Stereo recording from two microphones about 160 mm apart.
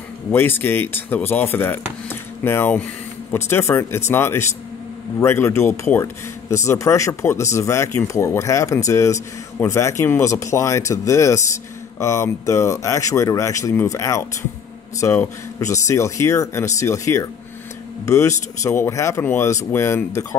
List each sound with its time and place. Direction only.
0.3 s speech: 15° left (ahead or behind)